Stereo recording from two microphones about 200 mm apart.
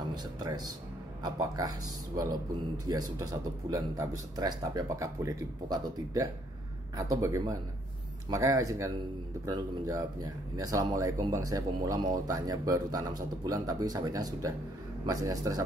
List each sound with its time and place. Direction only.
0.1 s speech: 20° right (ahead or behind)